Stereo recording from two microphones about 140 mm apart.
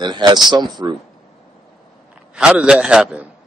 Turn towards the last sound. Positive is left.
turn(degrees=-5)  # may be behind; listen again after turning